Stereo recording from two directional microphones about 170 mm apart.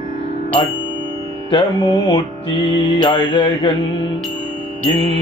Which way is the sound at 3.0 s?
25° left (ahead or behind).